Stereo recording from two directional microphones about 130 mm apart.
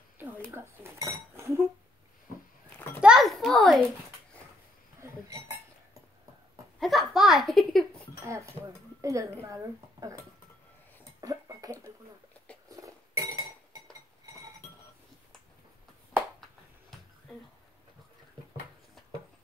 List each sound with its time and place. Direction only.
0.6 s speech: 20° right (ahead or behind)
3.0 s a sound: 5° right (ahead or behind)
6.8 s a sound: centre (ahead or behind)
9.0 s speech: 25° right (ahead or behind)
11.1 s cough: 25° right (ahead or behind)
12.6 s cutlery: 25° right (ahead or behind)